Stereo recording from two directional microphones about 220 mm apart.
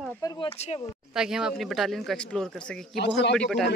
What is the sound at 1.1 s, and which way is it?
Speech, 5° right (ahead or behind).